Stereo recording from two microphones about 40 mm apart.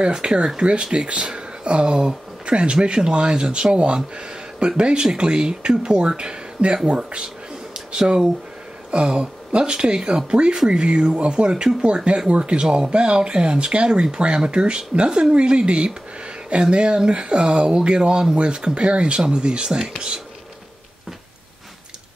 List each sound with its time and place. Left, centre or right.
0.0 s speech: right
7.7 s a sound: centre
9.0 s speech: right